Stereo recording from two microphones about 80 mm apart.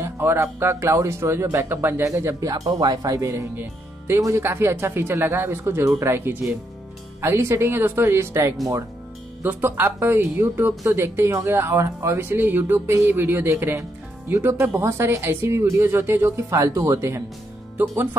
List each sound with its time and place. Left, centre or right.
0.0 s speech: right
2.4 s speech: right